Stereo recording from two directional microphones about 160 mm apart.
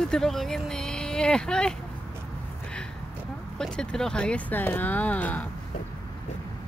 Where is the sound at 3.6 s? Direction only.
5° left (ahead or behind).